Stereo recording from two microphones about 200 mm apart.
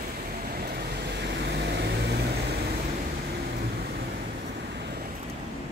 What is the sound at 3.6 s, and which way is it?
Vehicle, 50° right (ahead or behind).